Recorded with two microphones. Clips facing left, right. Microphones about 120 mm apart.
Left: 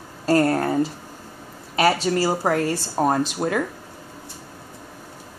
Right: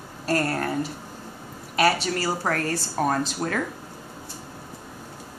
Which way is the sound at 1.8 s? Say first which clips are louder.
Left 3 dB; 25° left (ahead or behind).